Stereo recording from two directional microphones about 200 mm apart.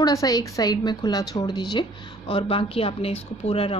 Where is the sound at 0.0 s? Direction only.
15° left (ahead or behind).